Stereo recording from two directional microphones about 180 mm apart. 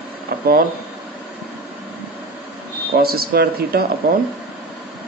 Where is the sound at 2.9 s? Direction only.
60° right (ahead or behind).